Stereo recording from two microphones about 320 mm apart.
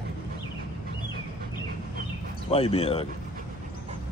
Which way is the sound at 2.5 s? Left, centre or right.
Centre.